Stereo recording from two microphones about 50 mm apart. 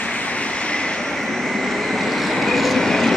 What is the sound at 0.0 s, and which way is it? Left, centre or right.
Vehicle, left.